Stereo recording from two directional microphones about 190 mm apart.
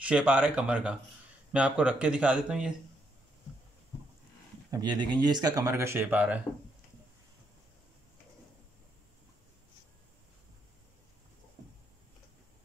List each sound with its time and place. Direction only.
0.0 s speech: 5° right (ahead or behind)
4.6 s speech: 20° right (ahead or behind)